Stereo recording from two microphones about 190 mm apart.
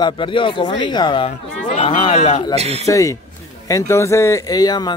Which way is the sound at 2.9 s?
15° left (ahead or behind).